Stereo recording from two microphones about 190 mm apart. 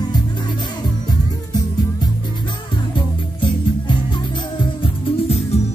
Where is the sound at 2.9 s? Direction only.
25° left (ahead or behind).